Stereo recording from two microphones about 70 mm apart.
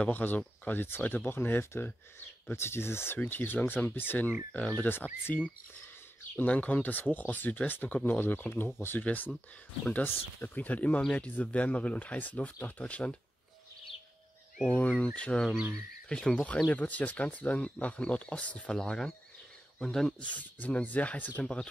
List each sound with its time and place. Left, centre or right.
0.0 s speech: left
4.5 s speech: centre
4.8 s speech: left
14.7 s speech: left
18.7 s speech: centre
20.2 s speech: left